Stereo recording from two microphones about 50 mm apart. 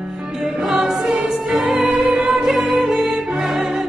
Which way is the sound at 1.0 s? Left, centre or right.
Right.